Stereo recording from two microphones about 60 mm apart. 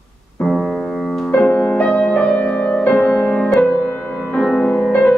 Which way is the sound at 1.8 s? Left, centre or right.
Centre.